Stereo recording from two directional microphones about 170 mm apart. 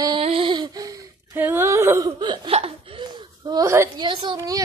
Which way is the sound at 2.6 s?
35° right (ahead or behind).